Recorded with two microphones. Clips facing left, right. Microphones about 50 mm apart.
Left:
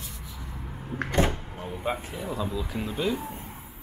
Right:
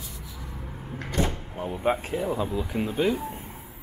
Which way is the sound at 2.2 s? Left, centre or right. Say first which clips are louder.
Right 1 dB; right.